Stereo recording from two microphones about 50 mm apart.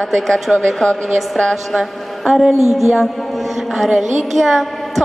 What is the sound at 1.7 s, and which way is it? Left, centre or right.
A woman's voice, centre.